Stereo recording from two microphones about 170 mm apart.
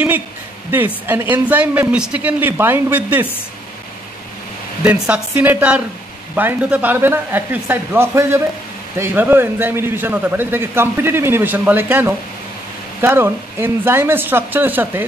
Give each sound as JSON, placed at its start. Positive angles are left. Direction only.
{"t": 1.3, "sound": "a man's voice", "side_deg": -10}
{"t": 5.0, "sound": "a man's voice", "side_deg": -10}